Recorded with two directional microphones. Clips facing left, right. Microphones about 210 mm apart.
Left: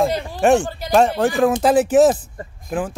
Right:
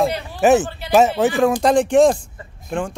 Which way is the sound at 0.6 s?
40° left (ahead or behind).